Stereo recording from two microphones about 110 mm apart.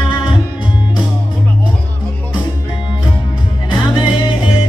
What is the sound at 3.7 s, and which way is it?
Music, 40° left (ahead or behind).